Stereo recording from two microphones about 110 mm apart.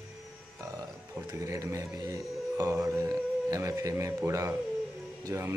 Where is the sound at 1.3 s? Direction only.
30° right (ahead or behind).